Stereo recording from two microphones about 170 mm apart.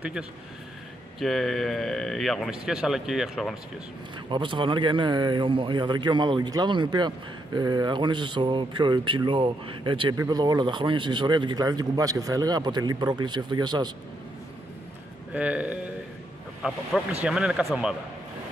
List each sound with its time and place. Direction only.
1.2 s speech: centre (ahead or behind)
4.3 s speech: 30° right (ahead or behind)
15.3 s speech: 10° right (ahead or behind)